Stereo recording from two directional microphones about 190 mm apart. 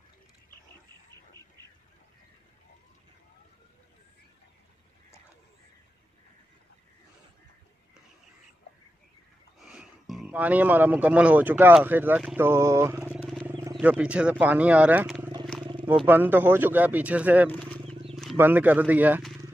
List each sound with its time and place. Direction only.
9.7 s speech: 5° right (ahead or behind)
15.6 s wild animals: 25° right (ahead or behind)
16.1 s speech: 10° right (ahead or behind)
17.5 s wild animals: 5° left (ahead or behind)
18.4 s speech: 10° right (ahead or behind)